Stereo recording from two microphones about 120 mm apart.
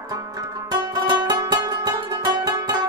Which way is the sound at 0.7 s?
35° right (ahead or behind).